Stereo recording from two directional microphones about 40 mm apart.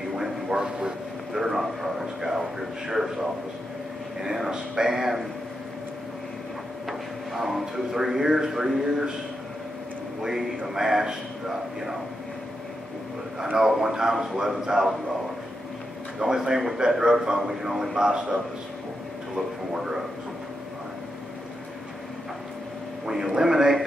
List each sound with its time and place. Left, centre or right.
0.1 s a sound: centre
0.6 s speech: centre
1.3 s a man's voice: centre
6.9 s a man's voice: centre
10.7 s a man's voice: centre
13.4 s a man's voice: centre
16.2 s a man's voice: centre
23.0 s a man's voice: centre